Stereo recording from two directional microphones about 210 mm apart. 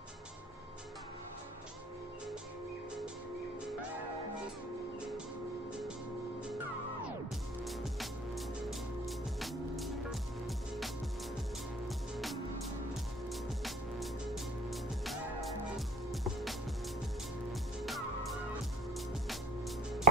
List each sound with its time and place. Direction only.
7.6 s music: centre (ahead or behind)
13.3 s music: centre (ahead or behind)